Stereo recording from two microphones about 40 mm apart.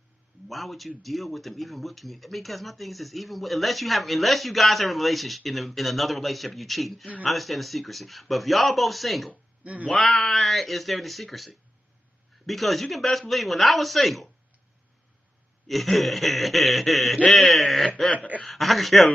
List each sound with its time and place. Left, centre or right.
0.5 s a man's voice: centre
9.6 s a sound: right
10.3 s a man's voice: centre
15.6 s a man's voice: centre